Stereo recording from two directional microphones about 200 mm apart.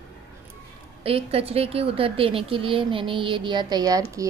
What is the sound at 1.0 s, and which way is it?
A woman's voice, 30° right (ahead or behind).